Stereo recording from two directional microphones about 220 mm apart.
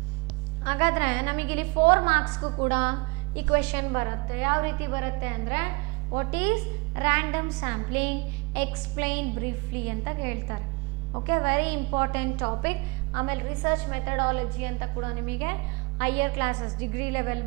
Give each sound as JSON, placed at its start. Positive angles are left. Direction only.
{"t": 0.7, "sound": "a woman's voice", "side_deg": -10}
{"t": 2.7, "sound": "a woman's voice", "side_deg": -10}